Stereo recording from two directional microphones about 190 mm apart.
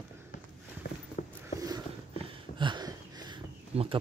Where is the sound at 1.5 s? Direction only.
20° right (ahead or behind).